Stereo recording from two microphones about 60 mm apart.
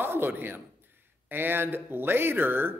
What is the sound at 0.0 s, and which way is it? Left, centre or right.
A man's voice, right.